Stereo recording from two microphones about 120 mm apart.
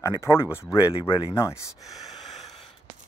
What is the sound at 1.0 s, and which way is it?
Speech, 40° left (ahead or behind).